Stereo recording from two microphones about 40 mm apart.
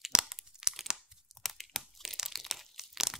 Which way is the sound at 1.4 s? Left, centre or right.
Centre.